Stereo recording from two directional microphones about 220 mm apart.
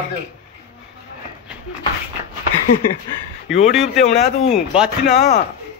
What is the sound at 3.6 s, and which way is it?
A man's voice, centre (ahead or behind).